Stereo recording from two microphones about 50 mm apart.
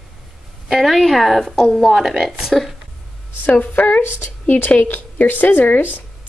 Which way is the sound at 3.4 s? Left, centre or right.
Left.